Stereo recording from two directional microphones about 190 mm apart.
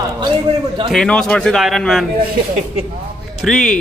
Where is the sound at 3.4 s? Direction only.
Centre (ahead or behind).